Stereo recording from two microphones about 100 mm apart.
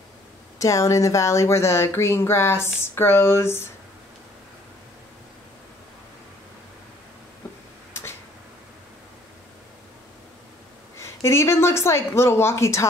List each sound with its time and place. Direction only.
0.6 s speech: 30° left (ahead or behind)
11.0 s speech: 25° left (ahead or behind)